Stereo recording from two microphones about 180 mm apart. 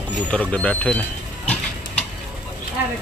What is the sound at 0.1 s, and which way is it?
Speech, 5° left (ahead or behind).